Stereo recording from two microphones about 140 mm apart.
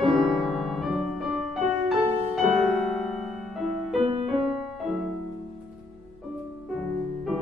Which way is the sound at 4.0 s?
45° right (ahead or behind).